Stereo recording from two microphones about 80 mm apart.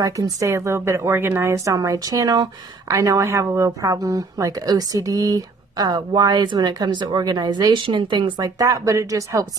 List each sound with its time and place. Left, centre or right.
0.0 s a woman's voice: right
8.4 s a woman's voice: right